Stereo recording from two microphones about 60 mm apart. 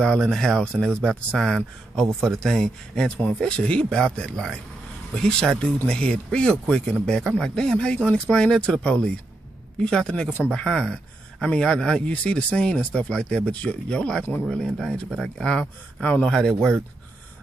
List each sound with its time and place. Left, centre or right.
0.2 s speech: centre
3.1 s speech: left
14.4 s speech: centre